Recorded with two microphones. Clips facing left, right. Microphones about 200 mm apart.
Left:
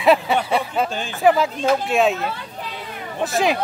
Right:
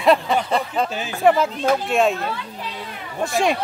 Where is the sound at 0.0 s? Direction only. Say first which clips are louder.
Even; 5° left (ahead or behind).